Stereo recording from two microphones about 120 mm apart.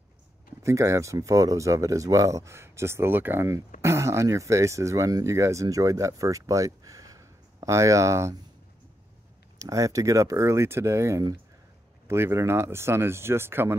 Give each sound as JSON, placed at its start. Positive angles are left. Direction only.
{"t": 0.6, "sound": "speech", "side_deg": -25}
{"t": 9.6, "sound": "speech", "side_deg": -25}